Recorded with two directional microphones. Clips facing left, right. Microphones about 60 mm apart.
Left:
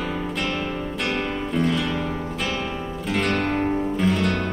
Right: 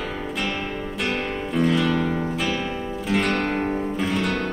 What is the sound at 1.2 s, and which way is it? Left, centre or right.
Music, centre.